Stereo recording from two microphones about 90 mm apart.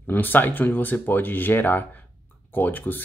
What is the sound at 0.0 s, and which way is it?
Speech, 20° left (ahead or behind).